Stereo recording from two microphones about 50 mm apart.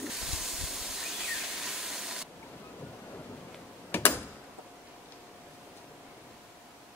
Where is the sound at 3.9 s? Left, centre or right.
Left.